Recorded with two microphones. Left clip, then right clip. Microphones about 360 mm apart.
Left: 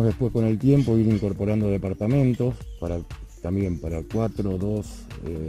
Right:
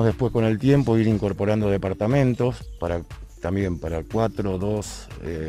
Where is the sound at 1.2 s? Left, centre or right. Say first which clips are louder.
Right 3 dB; right.